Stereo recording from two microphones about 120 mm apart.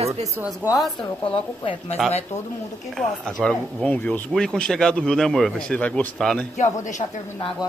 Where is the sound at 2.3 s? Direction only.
70° left (ahead or behind).